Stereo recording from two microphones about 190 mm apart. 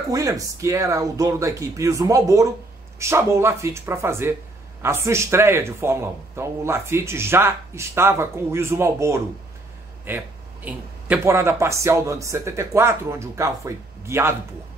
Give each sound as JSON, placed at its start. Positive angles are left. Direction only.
{"t": 0.1, "sound": "a man's voice", "side_deg": -20}